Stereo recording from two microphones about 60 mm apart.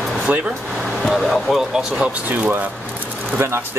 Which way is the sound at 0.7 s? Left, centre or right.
Centre.